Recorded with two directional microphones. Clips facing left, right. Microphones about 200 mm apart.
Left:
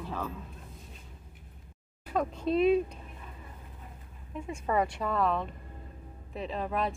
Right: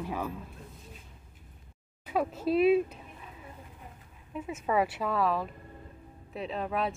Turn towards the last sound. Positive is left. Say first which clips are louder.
# even
turn(degrees=0)  # may be behind; listen again after turning